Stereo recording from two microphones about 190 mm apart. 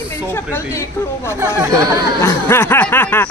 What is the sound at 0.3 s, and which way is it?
Speech, 10° left (ahead or behind).